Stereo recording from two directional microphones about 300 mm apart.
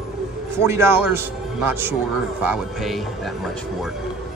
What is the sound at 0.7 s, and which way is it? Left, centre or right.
A man's voice, centre.